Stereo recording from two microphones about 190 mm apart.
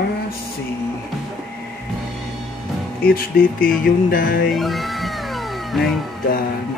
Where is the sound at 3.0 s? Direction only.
50° left (ahead or behind).